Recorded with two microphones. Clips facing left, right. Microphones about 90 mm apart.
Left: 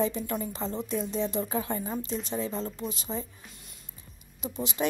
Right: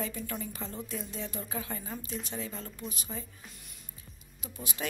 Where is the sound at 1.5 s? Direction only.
30° left (ahead or behind).